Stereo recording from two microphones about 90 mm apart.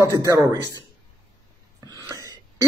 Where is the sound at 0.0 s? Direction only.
40° right (ahead or behind).